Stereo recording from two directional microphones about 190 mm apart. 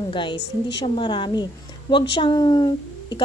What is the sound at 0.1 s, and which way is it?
Speech, 25° left (ahead or behind).